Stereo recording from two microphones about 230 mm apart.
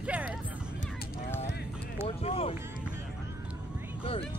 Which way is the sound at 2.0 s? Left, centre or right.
Left.